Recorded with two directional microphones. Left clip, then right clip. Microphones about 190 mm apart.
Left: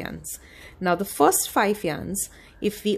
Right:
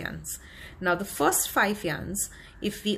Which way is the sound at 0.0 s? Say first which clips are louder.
Left 1 dB; 45° left (ahead or behind).